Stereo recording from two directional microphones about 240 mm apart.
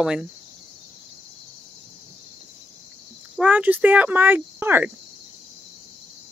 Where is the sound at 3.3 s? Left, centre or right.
Centre.